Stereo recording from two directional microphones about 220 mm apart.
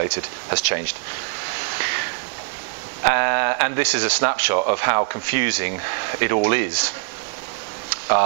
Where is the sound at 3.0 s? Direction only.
15° right (ahead or behind).